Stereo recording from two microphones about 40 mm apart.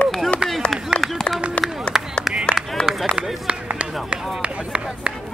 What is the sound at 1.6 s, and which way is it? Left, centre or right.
Run, left.